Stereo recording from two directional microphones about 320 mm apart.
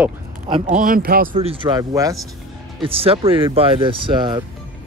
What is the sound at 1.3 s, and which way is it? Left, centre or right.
Speech, centre.